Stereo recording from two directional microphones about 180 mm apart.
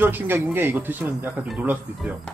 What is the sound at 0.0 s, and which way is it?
Speech, 10° right (ahead or behind).